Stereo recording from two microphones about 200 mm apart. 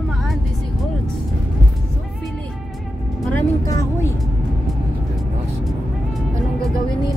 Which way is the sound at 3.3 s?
15° left (ahead or behind).